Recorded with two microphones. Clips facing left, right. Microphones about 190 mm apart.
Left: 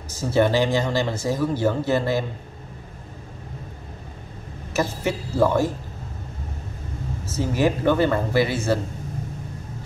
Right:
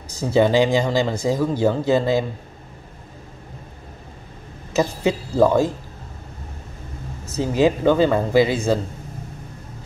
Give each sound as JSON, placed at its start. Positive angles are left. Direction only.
{"t": 0.1, "sound": "speech", "side_deg": -15}
{"t": 4.7, "sound": "speech", "side_deg": -15}
{"t": 7.2, "sound": "speech", "side_deg": -15}